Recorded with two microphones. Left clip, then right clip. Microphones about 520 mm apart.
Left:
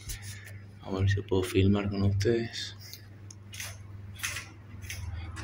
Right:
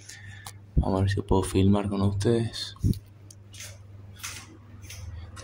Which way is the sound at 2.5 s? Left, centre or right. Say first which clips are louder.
Right 2 dB; centre.